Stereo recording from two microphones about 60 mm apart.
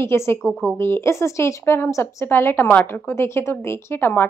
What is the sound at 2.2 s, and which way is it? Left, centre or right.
Speech, left.